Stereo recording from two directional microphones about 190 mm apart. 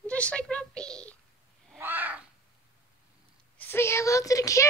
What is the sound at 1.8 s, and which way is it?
Crow, 10° right (ahead or behind).